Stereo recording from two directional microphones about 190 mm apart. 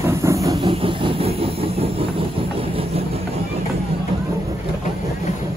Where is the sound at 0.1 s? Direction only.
15° right (ahead or behind).